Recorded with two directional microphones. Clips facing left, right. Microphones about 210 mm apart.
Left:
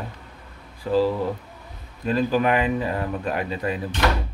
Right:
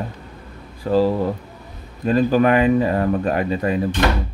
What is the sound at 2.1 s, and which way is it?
Speech, 45° right (ahead or behind).